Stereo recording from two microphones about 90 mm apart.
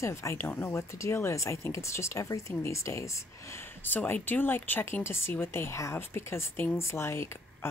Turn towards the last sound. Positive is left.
turn(degrees=30)  # may be behind; listen again after turning